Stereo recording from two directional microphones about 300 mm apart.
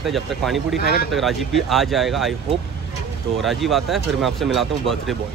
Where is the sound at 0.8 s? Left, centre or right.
Left.